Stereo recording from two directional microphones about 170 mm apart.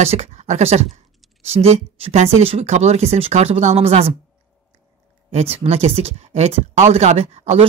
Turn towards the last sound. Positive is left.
turn(degrees=-40)  # may be behind; listen again after turning